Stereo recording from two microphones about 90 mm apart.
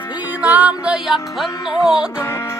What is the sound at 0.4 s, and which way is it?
Music, 15° right (ahead or behind).